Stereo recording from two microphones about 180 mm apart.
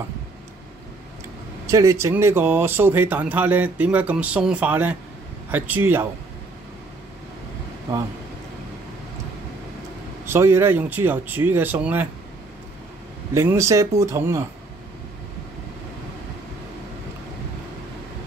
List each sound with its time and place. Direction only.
1.7 s speech: 15° right (ahead or behind)
10.2 s speech: 15° right (ahead or behind)
13.3 s speech: 15° right (ahead or behind)